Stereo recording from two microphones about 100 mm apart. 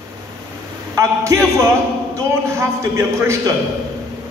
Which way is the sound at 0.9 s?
30° right (ahead or behind).